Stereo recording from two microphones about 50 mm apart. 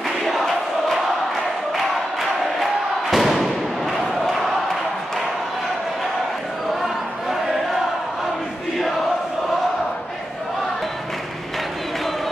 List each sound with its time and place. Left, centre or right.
0.3 s crowd: centre
2.6 s crowd: centre
6.8 s a sound: centre